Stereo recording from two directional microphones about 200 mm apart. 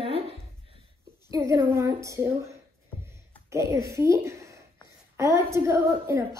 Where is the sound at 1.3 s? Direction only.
20° right (ahead or behind).